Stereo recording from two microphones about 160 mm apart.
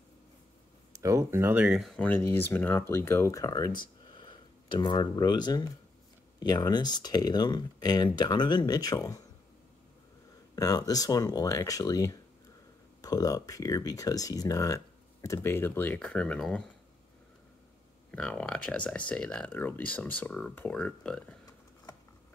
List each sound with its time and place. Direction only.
0.9 s speech: 20° right (ahead or behind); by 9.2 s 20° left (ahead or behind)
10.5 s speech: 25° left (ahead or behind); by 16.6 s 5° left (ahead or behind)
18.1 s speech: 5° left (ahead or behind)